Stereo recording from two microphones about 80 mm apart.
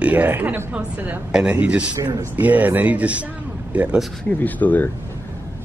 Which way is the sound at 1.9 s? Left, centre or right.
Right.